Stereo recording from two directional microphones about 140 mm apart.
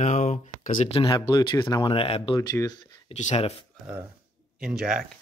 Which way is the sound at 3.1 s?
55° left (ahead or behind).